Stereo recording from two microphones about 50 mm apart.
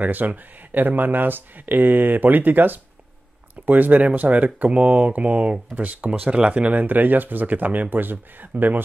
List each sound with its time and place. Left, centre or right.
0.0 s speech: right